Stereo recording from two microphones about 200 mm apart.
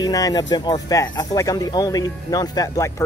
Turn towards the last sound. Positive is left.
turn(degrees=15)  # may be behind; listen again after turning